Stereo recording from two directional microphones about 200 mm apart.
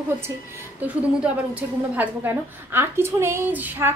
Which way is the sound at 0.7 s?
5° right (ahead or behind).